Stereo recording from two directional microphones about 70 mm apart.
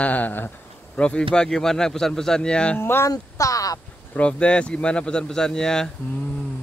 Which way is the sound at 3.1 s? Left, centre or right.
Left.